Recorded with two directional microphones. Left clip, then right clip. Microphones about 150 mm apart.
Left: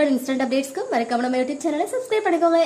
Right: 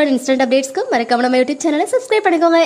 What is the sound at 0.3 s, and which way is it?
A woman's voice, 30° right (ahead or behind).